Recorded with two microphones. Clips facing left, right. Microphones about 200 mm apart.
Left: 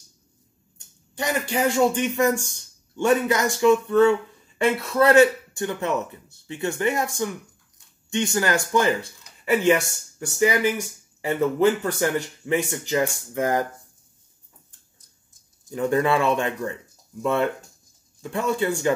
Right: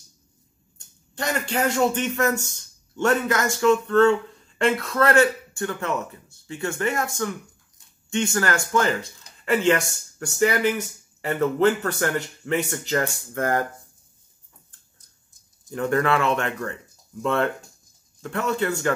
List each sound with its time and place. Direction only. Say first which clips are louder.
1.1 s a man's voice: left 1 dB; 10° left (ahead or behind)
8.1 s a man's voice: left 1 dB; 15° left (ahead or behind)
15.7 s a man's voice: left 1 dB; 15° left (ahead or behind)